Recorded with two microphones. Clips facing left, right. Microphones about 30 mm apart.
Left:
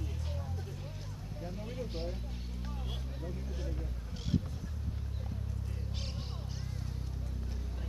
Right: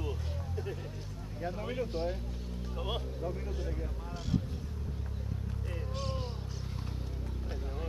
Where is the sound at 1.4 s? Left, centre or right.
Right.